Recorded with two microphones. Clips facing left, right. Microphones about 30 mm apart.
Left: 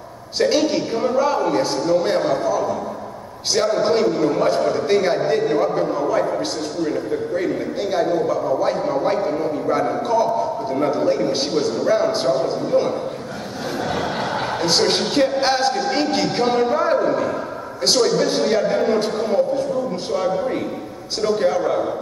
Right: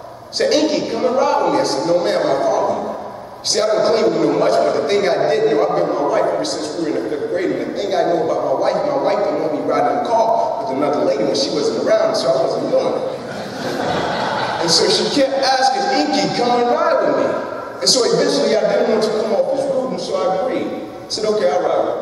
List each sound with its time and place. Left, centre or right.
0.4 s a man's voice: right
3.5 s a man's voice: right
19.5 s speech: right
20.2 s a man's voice: right